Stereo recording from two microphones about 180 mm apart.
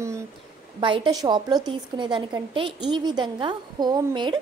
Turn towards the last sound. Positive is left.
turn(degrees=-25)  # may be behind; listen again after turning